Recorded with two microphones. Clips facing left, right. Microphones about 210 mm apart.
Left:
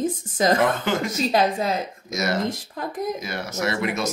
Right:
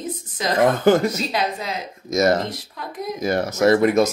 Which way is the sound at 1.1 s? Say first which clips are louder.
Left 4 dB; 45° left (ahead or behind).